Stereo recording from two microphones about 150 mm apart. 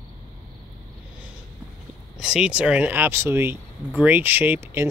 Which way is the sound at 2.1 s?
5° right (ahead or behind).